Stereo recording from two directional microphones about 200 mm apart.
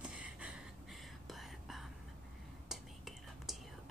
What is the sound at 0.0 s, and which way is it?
Whispering, 5° right (ahead or behind).